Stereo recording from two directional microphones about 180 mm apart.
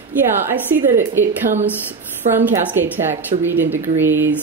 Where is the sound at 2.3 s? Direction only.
10° right (ahead or behind).